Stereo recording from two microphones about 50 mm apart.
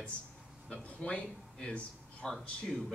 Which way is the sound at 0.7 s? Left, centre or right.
Left.